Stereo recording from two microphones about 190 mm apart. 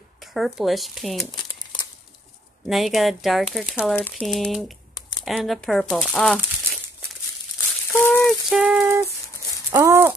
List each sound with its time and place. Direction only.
0.2 s speech: centre (ahead or behind)
1.3 s crumpling: 25° left (ahead or behind)
2.7 s speech: centre (ahead or behind)
7.9 s rattle: 10° left (ahead or behind)
8.5 s a sound: 5° right (ahead or behind)